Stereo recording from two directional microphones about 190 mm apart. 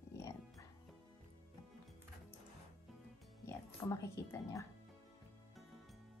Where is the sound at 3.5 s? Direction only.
15° left (ahead or behind).